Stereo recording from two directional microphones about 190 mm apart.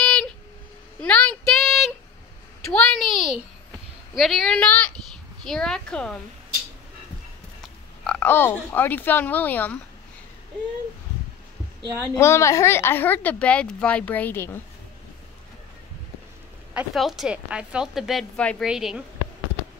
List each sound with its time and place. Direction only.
0.0 s a sound: 5° left (ahead or behind)
1.0 s child singing: 5° left (ahead or behind)
2.6 s a sound: centre (ahead or behind)
4.1 s a woman's voice: centre (ahead or behind)
7.6 s speech: 5° left (ahead or behind)
11.8 s a woman's voice: 15° right (ahead or behind)
12.2 s a woman's voice: 15° left (ahead or behind)
16.7 s a woman's voice: centre (ahead or behind)